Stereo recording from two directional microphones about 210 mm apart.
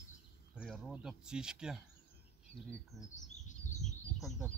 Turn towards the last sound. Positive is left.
turn(degrees=0)  # may be behind; listen again after turning